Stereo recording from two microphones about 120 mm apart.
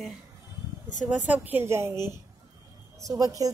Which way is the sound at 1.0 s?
10° right (ahead or behind).